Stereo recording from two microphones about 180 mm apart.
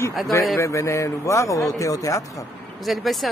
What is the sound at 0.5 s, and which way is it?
A man's voice, 15° left (ahead or behind).